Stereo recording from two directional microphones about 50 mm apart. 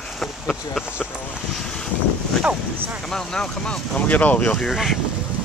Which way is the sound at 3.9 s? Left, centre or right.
Left.